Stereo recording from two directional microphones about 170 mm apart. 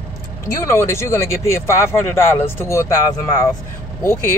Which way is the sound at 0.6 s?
15° left (ahead or behind).